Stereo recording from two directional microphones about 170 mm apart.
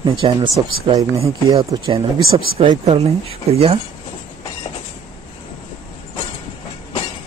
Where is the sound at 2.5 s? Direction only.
35° right (ahead or behind).